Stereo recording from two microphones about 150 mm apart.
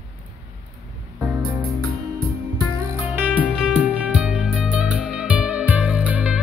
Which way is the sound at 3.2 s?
10° right (ahead or behind).